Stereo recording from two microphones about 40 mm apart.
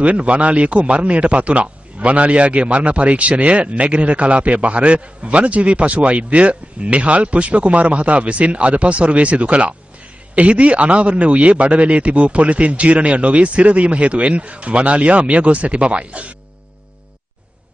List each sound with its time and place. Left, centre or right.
0.0 s a man's voice: right